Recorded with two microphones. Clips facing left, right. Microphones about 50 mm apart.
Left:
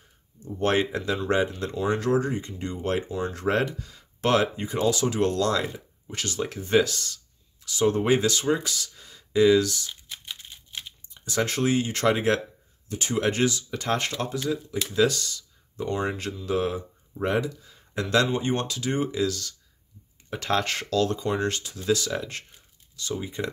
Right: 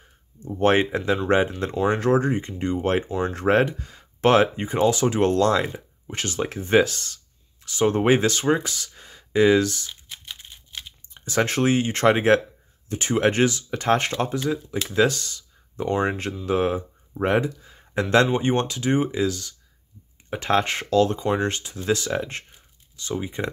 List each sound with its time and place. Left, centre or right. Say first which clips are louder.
0.5 s speech: right 5 dB; right
10.0 s crumpling: even; centre
11.1 s speech: right 4 dB; right